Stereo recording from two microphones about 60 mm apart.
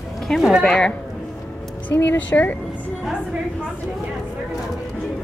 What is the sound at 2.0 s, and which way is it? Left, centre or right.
Speech, left.